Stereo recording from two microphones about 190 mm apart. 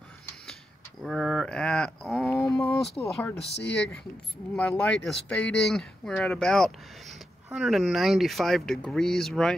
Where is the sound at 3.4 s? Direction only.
65° left (ahead or behind).